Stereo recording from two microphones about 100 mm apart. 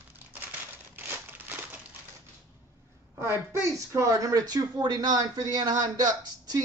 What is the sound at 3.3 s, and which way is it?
Speech, 25° right (ahead or behind).